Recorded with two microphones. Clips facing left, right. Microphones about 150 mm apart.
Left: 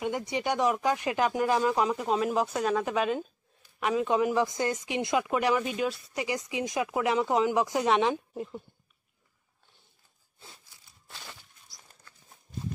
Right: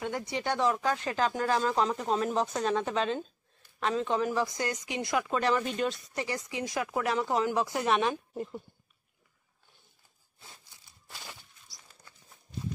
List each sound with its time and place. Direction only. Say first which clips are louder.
0.0 s speech: left 3 dB; 20° left (ahead or behind)
8.4 s speech: even; centre (ahead or behind)
11.1 s a sound: even; 5° right (ahead or behind)
12.3 s clip-clop: left 1 dB; 50° left (ahead or behind)